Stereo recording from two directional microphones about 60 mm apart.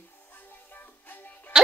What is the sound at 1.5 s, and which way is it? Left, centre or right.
Music, centre.